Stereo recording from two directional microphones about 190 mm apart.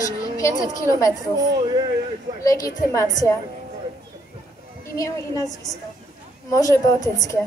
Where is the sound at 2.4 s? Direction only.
15° left (ahead or behind).